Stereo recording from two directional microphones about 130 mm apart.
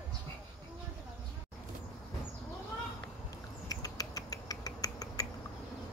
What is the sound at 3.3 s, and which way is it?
Rodents, 30° left (ahead or behind).